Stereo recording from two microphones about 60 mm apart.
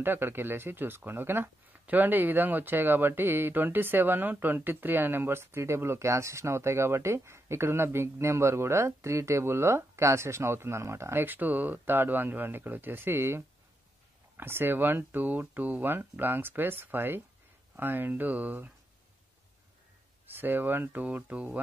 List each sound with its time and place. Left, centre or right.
0.0 s speech: right
11.2 s speech: right
20.3 s speech: right